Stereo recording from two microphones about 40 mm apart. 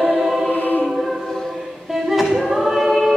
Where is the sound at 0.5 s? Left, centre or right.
Left.